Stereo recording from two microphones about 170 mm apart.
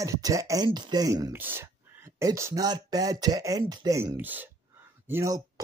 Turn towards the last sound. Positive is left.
turn(degrees=-20)  # may be behind; listen again after turning